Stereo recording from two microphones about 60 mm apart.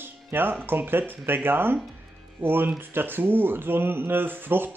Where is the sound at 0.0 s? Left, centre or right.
Right.